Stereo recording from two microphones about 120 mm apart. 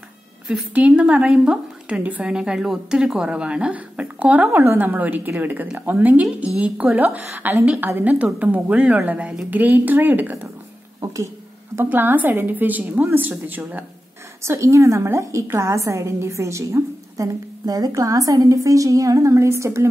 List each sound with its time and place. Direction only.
0.5 s a woman's voice: 10° right (ahead or behind)
11.7 s a woman's voice: 15° right (ahead or behind)